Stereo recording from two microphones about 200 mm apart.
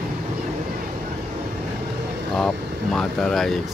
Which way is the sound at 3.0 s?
5° left (ahead or behind).